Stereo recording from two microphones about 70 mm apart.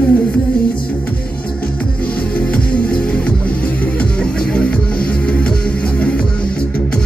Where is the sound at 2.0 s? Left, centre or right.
Centre.